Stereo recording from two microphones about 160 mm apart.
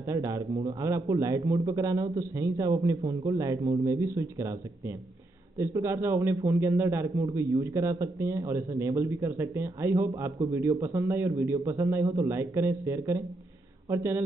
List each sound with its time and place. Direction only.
0.0 s a man's voice: 20° right (ahead or behind)